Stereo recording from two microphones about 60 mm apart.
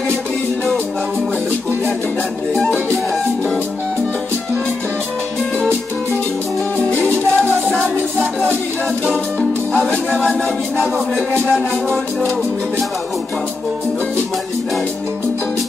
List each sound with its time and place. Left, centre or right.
6.8 s music: left
9.7 s music: centre